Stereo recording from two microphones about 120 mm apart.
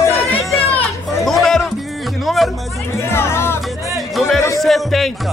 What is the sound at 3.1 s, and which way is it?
Music, 20° left (ahead or behind).